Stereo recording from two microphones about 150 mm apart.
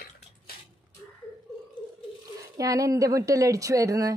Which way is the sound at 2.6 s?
20° right (ahead or behind).